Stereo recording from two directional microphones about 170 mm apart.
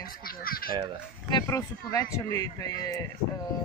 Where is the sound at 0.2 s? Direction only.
60° left (ahead or behind).